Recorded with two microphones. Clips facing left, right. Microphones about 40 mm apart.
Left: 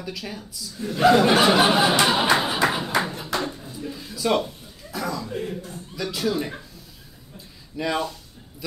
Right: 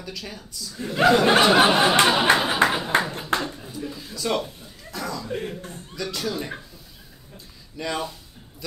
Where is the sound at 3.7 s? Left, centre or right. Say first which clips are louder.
Even; centre.